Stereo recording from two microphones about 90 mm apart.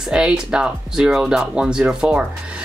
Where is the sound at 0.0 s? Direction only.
10° right (ahead or behind).